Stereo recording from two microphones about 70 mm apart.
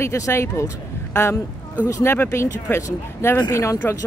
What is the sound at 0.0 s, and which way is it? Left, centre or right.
Speech, left.